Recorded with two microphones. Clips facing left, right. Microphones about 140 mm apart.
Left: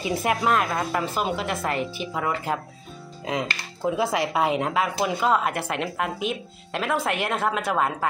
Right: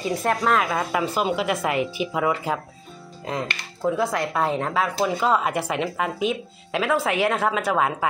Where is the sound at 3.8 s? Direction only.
10° left (ahead or behind).